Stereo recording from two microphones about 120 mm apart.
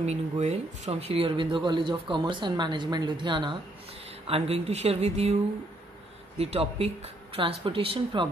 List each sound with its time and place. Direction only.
0.0 s speech: 65° right (ahead or behind); by 3.5 s 40° right (ahead or behind)
4.3 s speech: 60° right (ahead or behind)
6.3 s speech: 60° right (ahead or behind)